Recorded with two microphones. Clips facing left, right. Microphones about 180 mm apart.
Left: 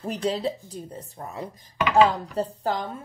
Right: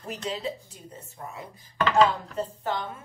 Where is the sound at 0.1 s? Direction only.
35° left (ahead or behind).